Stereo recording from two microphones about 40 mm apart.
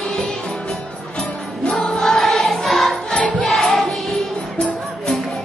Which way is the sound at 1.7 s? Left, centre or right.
Centre.